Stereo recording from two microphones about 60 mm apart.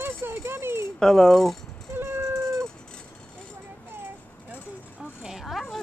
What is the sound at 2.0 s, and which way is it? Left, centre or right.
Cat, right.